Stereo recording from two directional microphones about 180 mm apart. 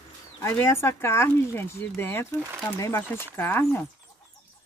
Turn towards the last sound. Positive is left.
turn(degrees=10)  # may be behind; listen again after turning